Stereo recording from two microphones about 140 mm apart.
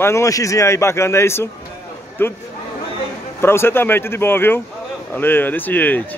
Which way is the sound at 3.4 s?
15° left (ahead or behind).